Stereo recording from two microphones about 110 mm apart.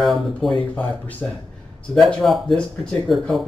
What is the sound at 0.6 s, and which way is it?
Speech, 15° left (ahead or behind).